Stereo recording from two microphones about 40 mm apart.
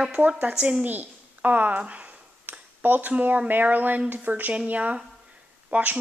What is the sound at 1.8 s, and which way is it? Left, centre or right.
Speech, right.